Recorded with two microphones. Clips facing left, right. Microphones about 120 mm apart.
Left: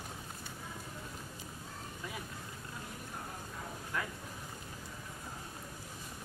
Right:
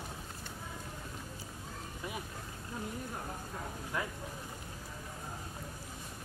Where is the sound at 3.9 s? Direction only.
15° right (ahead or behind).